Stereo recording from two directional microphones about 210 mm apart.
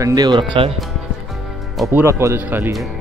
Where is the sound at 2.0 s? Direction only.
15° right (ahead or behind).